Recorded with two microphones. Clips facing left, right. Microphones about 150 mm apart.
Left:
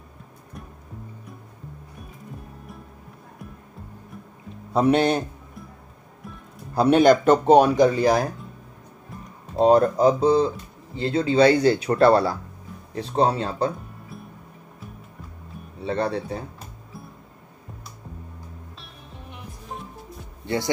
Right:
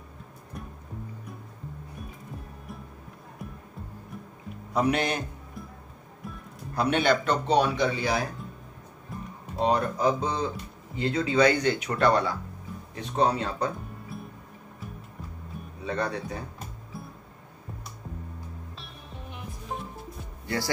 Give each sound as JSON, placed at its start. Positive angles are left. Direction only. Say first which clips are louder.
{"t": 4.7, "sound": "speech", "louder": "left 7 dB", "side_deg": 30}
{"t": 6.7, "sound": "speech", "louder": "left 8 dB", "side_deg": 35}
{"t": 9.6, "sound": "speech", "louder": "left 9 dB", "side_deg": 35}
{"t": 15.8, "sound": "speech", "louder": "left 5 dB", "side_deg": 30}